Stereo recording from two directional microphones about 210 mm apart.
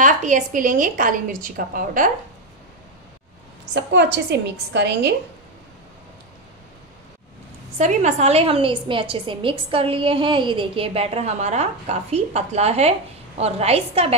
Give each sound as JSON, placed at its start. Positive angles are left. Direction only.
{"t": 0.0, "sound": "a woman's voice", "side_deg": -35}
{"t": 3.7, "sound": "a woman's voice", "side_deg": -55}
{"t": 7.7, "sound": "a woman's voice", "side_deg": -35}